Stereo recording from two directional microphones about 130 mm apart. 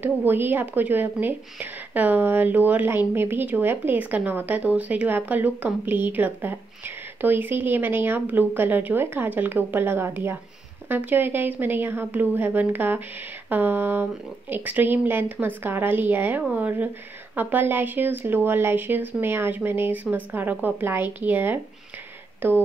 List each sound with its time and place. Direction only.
0.0 s a woman's voice: 15° right (ahead or behind)